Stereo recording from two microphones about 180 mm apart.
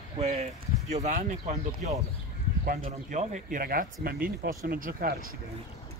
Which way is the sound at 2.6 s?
50° right (ahead or behind).